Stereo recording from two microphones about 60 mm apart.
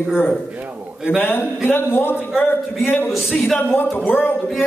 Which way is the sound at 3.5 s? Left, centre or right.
Left.